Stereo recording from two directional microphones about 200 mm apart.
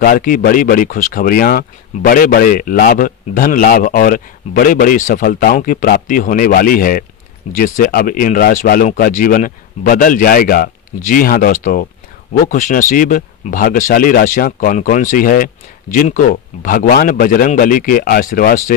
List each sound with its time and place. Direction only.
0.0 s speech: 45° left (ahead or behind)